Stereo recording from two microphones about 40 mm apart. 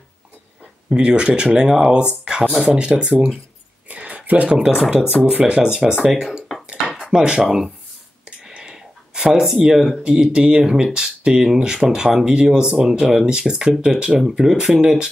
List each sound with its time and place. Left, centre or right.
0.8 s speech: right
2.5 s speech: centre
2.8 s speech: right
3.9 s a sound: right
4.5 s speech: right
6.5 s dishes: centre
7.1 s speech: centre
7.4 s speech: centre
8.6 s a sound: centre
10.0 s speech: centre